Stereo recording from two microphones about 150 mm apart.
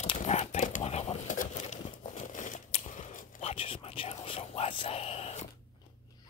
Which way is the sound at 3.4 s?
40° left (ahead or behind).